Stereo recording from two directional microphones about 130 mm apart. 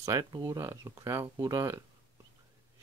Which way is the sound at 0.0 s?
30° right (ahead or behind).